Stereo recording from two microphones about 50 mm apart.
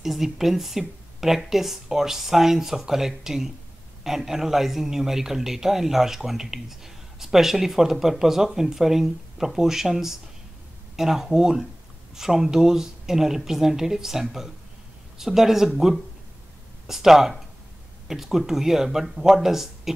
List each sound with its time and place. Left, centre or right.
0.0 s speech: centre
16.8 s speech: centre